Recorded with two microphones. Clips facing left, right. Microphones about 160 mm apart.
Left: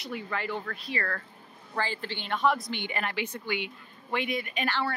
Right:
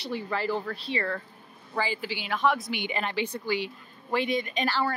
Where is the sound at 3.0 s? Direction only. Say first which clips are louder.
Right 3 dB; 30° right (ahead or behind).